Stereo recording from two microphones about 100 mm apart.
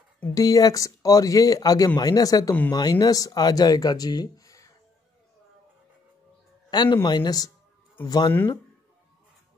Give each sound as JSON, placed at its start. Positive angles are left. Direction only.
{"t": 0.3, "sound": "speech", "side_deg": 35}
{"t": 6.7, "sound": "a man's voice", "side_deg": 50}